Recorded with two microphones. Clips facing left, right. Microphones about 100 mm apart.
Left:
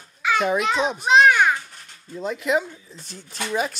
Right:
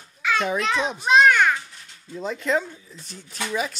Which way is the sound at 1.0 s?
10° left (ahead or behind).